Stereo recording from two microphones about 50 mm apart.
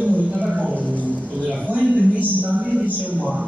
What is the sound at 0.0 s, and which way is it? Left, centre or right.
Music, right.